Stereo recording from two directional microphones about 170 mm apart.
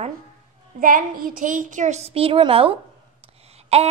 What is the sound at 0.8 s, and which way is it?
A woman's voice, 55° right (ahead or behind).